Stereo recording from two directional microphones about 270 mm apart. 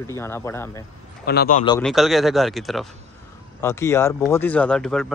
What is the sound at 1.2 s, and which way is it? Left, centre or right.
Speech, left.